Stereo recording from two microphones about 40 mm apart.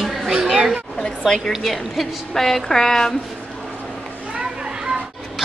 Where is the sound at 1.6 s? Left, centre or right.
Centre.